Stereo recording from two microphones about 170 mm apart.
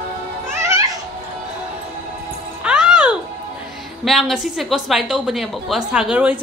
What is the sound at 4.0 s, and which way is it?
Speech, centre (ahead or behind).